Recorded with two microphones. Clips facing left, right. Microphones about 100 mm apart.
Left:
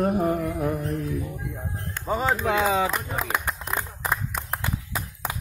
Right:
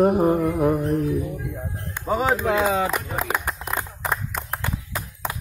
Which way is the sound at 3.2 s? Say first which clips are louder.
Right 2 dB; 10° right (ahead or behind).